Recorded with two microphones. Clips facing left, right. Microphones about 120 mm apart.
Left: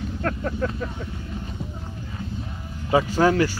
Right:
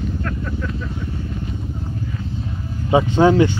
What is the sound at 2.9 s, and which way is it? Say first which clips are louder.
Vehicle: right 5 dB; 20° right (ahead or behind).